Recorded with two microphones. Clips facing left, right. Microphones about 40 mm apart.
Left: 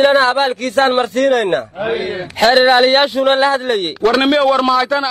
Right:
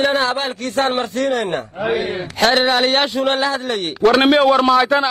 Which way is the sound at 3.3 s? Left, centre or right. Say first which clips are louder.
Left 5 dB; left.